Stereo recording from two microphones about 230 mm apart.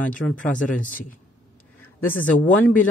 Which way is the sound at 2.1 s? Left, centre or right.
Left.